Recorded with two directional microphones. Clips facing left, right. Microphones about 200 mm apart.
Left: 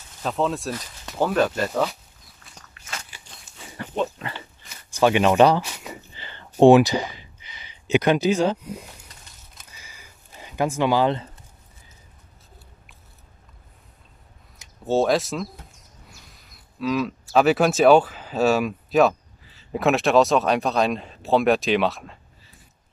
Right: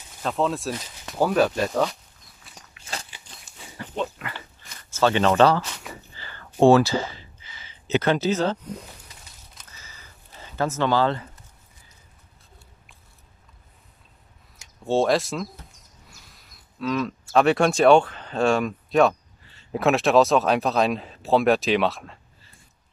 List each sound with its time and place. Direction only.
0.2 s speech: centre (ahead or behind)
3.7 s pig: 45° left (ahead or behind)
4.9 s a sound: 15° left (ahead or behind)
14.6 s speech: centre (ahead or behind)